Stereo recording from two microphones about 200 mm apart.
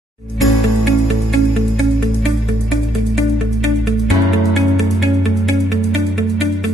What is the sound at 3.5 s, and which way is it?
Music, centre (ahead or behind).